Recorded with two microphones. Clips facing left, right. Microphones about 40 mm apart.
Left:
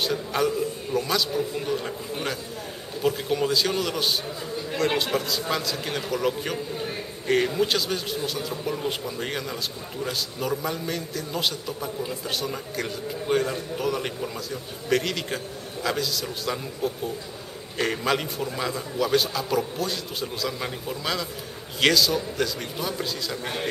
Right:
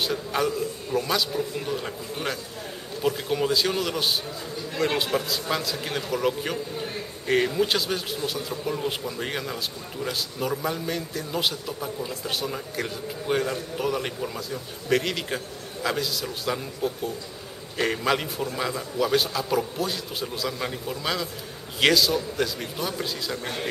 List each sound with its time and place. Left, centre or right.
0.0 s a man's voice: centre
23.4 s a man's voice: centre